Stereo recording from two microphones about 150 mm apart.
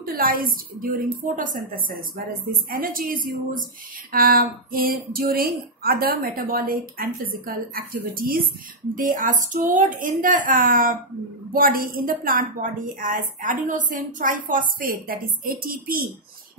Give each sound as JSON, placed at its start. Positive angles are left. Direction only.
{"t": 0.0, "sound": "a woman's voice", "side_deg": -75}
{"t": 1.9, "sound": "a woman's voice", "side_deg": -70}
{"t": 8.9, "sound": "a woman's voice", "side_deg": -65}